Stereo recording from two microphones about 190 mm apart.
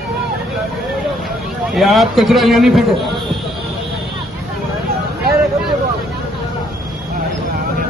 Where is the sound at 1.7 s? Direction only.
Centre (ahead or behind).